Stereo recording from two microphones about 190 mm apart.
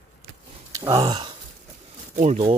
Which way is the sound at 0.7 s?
20° right (ahead or behind).